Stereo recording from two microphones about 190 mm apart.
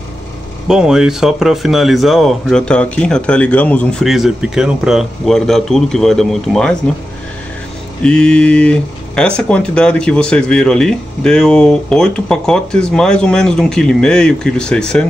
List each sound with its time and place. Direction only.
0.7 s speech: 5° right (ahead or behind)
8.0 s speech: 5° left (ahead or behind)